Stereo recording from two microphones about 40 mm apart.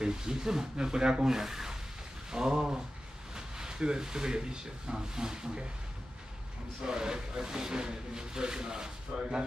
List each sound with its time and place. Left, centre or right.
0.0 s speech: centre
2.3 s a sound: centre
3.3 s speech: centre
6.9 s speech: centre